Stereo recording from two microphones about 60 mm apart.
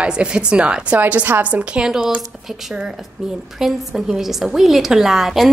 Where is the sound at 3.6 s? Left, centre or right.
Centre.